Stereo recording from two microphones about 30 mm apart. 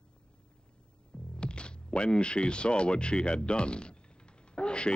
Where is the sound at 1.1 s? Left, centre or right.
Left.